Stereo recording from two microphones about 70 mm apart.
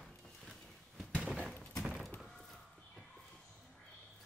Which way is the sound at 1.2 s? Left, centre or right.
Centre.